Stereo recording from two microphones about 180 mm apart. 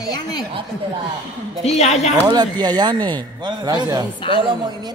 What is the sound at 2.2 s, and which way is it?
Speech, 25° right (ahead or behind).